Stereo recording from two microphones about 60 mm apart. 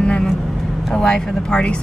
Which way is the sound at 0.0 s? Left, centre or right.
Centre.